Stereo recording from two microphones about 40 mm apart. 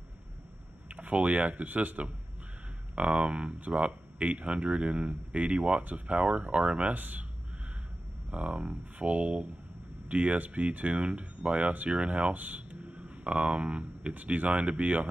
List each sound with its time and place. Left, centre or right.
0.8 s speech: right
7.0 s speech: right
8.3 s speech: right
12.6 s speech: right